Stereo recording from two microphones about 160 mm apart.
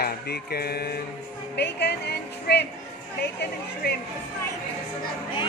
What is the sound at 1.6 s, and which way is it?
Speech, 90° left.